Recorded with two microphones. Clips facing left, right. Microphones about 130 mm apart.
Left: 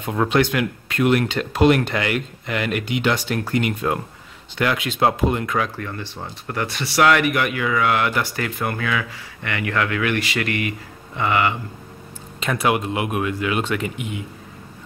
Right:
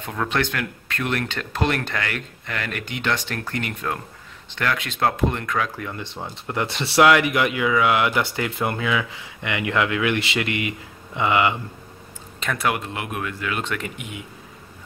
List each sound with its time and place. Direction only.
0.0 s speech: 15° left (ahead or behind)
5.8 s speech: 10° right (ahead or behind)
12.4 s speech: 10° left (ahead or behind)